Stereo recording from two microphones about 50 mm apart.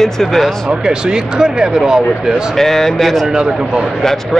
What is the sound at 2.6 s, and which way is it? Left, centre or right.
Speech, centre.